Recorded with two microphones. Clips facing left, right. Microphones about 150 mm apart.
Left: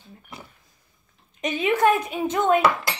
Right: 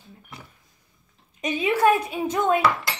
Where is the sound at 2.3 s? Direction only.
25° left (ahead or behind).